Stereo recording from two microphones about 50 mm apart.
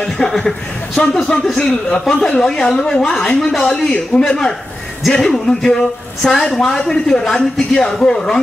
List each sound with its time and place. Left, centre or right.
0.0 s a man's voice: centre